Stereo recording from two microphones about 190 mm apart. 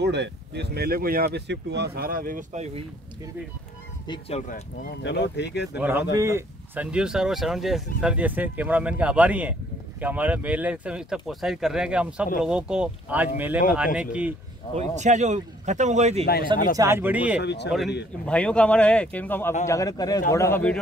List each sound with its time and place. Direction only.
0.0 s speech: 65° right (ahead or behind); by 2.8 s 35° right (ahead or behind)
4.1 s speech: 35° left (ahead or behind)
5.0 s speech: 65° left (ahead or behind)
5.8 s speech: 10° right (ahead or behind)
14.8 s speech: 40° right (ahead or behind)
16.7 s speech: 15° right (ahead or behind)
17.4 s speech: 65° left (ahead or behind)
17.6 s speech: centre (ahead or behind)